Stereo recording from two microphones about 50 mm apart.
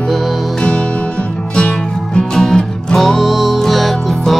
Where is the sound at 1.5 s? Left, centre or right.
Left.